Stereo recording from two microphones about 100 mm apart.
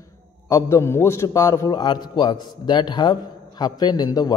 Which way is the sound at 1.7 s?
50° left (ahead or behind).